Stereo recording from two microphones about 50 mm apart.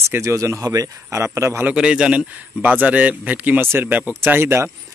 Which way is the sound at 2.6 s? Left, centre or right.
Right.